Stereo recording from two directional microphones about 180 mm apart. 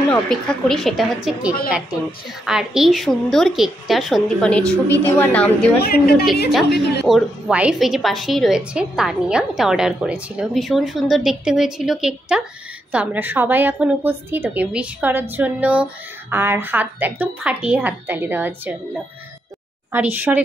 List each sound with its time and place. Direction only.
0.1 s a woman's voice: 5° left (ahead or behind)
5.8 s a woman's voice: 55° left (ahead or behind)
7.1 s a woman's voice: centre (ahead or behind)
19.9 s a woman's voice: 10° right (ahead or behind)